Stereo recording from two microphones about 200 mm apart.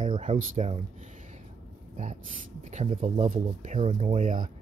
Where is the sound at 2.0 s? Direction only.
40° right (ahead or behind).